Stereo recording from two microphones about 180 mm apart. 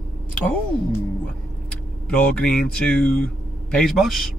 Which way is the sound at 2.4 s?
5° left (ahead or behind).